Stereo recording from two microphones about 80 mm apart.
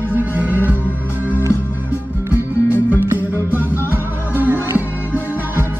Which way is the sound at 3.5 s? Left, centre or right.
Right.